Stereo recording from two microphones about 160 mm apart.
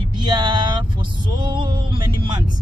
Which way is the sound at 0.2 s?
25° right (ahead or behind).